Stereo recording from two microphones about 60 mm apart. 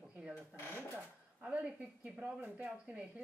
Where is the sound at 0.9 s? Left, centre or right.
Centre.